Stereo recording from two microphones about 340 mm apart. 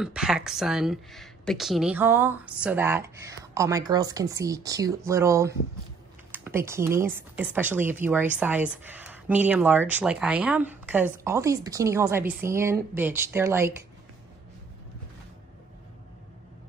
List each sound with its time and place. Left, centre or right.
0.0 s speech: centre